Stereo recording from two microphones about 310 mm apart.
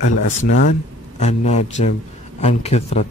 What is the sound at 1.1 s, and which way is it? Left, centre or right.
A man's voice, left.